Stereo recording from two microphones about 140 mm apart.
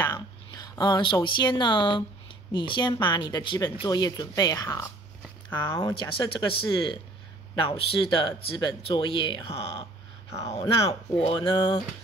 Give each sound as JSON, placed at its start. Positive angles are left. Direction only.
{"t": 0.0, "sound": "speech", "side_deg": 20}
{"t": 5.8, "sound": "speech", "side_deg": 35}
{"t": 10.9, "sound": "speech", "side_deg": 40}